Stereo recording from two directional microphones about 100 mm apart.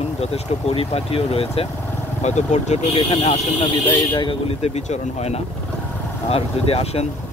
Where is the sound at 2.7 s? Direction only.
75° left (ahead or behind).